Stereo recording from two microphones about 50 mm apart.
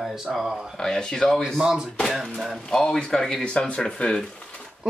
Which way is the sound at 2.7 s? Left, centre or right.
Centre.